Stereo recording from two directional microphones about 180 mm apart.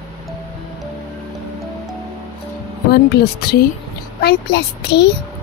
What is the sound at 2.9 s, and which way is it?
A child's voice, 60° left (ahead or behind).